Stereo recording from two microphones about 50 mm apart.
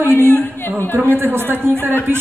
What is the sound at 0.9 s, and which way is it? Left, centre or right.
Speech, right.